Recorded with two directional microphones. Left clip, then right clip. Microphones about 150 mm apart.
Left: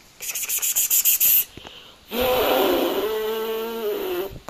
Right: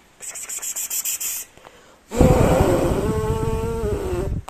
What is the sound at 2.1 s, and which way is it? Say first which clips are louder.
Gasp: right 2 dB; centre (ahead or behind).